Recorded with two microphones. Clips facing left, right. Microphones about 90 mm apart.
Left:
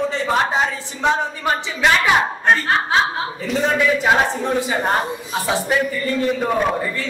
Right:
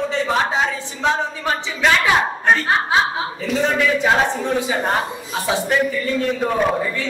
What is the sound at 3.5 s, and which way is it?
Speech, centre (ahead or behind).